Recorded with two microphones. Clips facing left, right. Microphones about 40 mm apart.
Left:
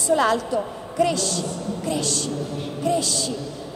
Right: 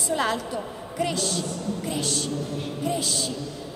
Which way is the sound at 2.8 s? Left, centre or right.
Centre.